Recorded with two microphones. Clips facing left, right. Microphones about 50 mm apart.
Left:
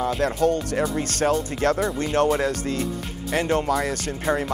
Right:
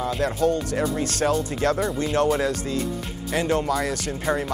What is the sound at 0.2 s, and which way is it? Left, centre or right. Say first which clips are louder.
Speech: right 1 dB; left.